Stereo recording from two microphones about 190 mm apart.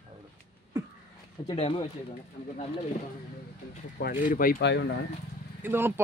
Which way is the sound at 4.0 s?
45° left (ahead or behind).